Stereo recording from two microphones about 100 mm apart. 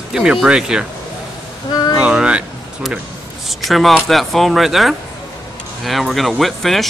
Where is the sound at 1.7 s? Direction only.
40° left (ahead or behind).